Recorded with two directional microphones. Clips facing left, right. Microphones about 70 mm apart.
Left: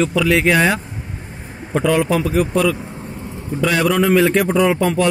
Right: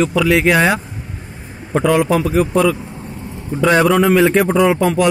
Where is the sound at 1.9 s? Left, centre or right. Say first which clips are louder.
Right 2 dB; centre.